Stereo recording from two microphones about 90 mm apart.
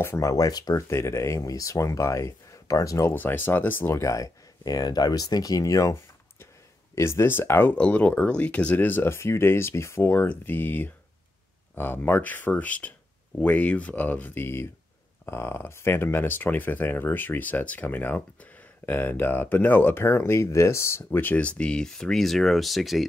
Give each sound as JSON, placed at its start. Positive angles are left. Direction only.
{"t": 0.0, "sound": "speech", "side_deg": 30}
{"t": 0.3, "sound": "speech", "side_deg": 45}
{"t": 0.8, "sound": "speech", "side_deg": 30}
{"t": 3.1, "sound": "speech", "side_deg": 25}